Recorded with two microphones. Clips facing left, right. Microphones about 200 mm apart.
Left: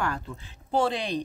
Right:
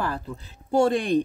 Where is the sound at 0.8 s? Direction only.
50° right (ahead or behind).